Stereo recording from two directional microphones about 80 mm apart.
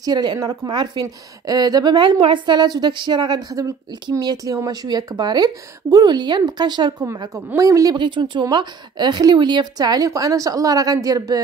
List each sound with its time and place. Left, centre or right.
0.0 s a woman's voice: right
1.0 s a woman's voice: right
4.2 s a woman's voice: right
7.3 s a woman's voice: right
7.9 s a woman's voice: right